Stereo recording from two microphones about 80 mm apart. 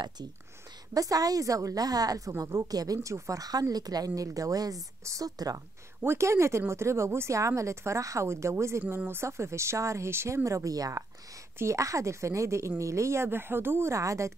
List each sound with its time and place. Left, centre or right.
0.9 s a woman's voice: right
6.0 s a woman's voice: right